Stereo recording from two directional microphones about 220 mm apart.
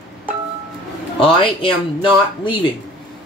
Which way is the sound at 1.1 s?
25° left (ahead or behind).